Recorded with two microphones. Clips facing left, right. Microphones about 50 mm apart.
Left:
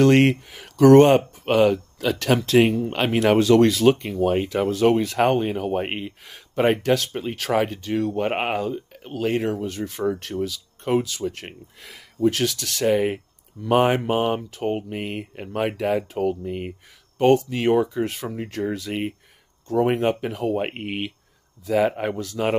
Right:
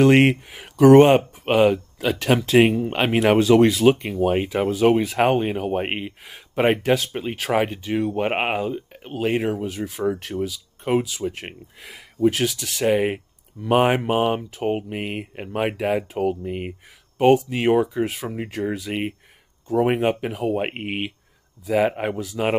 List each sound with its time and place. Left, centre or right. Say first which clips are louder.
0.0 s speech: right 1 dB; centre